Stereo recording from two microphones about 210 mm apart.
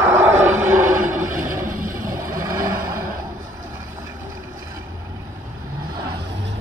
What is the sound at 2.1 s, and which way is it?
Vehicle, 15° right (ahead or behind).